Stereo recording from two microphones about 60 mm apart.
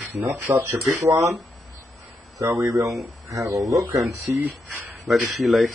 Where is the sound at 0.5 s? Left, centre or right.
Right.